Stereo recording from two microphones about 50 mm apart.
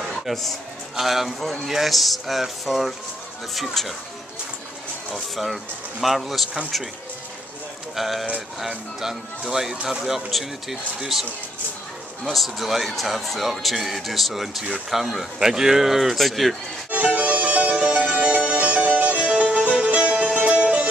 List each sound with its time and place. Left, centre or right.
0.1 s speech: centre
5.1 s speech: centre
7.9 s speech: centre
12.3 s speech: centre
16.9 s music: right